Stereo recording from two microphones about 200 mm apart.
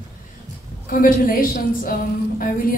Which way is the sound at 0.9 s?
45° left (ahead or behind).